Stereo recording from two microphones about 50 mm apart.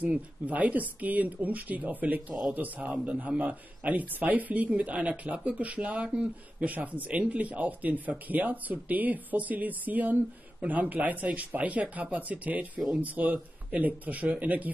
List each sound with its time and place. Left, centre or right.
0.0 s speech: right